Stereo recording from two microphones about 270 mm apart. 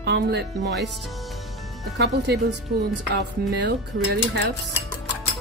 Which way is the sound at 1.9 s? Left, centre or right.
Right.